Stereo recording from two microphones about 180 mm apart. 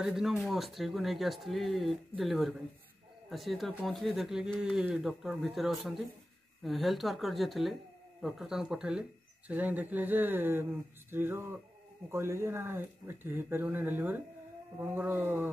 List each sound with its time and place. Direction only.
0.0 s speech: 5° right (ahead or behind)